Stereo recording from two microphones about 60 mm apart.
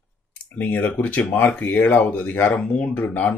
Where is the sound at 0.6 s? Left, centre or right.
Left.